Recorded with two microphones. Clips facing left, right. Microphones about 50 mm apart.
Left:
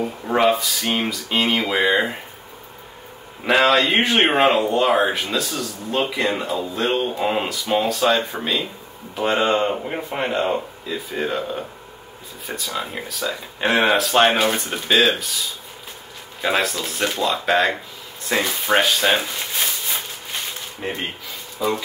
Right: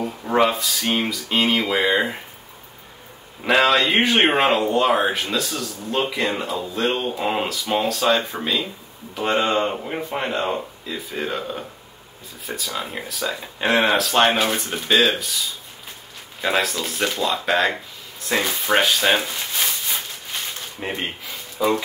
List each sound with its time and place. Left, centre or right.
0.0 s speech: centre
3.4 s speech: centre
16.3 s speech: centre
18.3 s a sound: centre
20.8 s speech: centre